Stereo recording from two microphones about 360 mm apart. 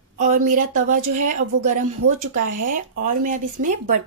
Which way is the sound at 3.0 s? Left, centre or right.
Right.